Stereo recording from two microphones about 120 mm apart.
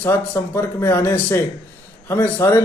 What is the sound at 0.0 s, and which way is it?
Speech, 20° left (ahead or behind).